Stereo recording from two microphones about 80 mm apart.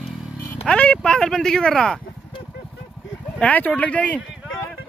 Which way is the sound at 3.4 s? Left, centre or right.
Centre.